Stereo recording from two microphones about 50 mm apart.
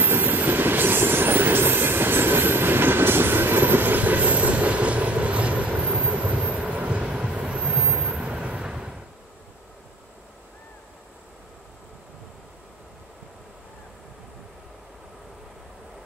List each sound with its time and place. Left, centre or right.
0.0 s train: right
7.0 s train: centre
8.6 s vehicle: centre